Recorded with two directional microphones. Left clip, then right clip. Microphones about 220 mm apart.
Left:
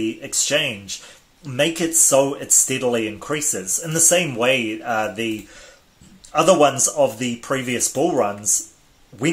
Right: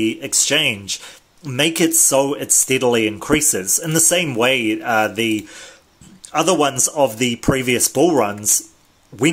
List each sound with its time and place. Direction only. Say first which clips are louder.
0.0 s speech: right 4 dB; 35° right (ahead or behind)